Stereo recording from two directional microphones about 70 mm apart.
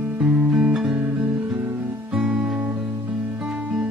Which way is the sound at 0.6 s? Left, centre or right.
Centre.